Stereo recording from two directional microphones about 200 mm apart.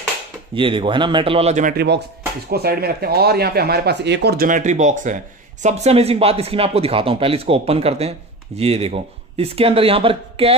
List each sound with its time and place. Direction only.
0.6 s speech: 25° right (ahead or behind)